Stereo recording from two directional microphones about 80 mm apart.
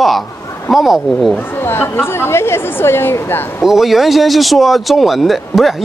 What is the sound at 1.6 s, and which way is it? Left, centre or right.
A woman's voice, left.